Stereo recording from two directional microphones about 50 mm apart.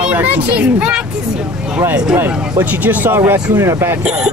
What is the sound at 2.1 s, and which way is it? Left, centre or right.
Speech, right.